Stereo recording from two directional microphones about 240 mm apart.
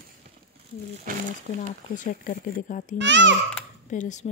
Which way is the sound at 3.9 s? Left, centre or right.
Left.